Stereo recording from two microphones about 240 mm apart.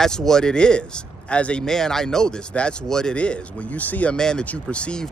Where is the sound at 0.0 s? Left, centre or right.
Centre.